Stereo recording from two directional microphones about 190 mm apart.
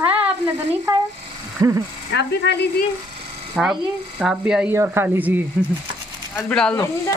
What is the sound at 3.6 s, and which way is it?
Speech, centre (ahead or behind).